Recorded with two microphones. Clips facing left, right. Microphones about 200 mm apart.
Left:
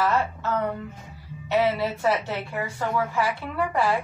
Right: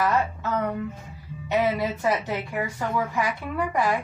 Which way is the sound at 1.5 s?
15° right (ahead or behind).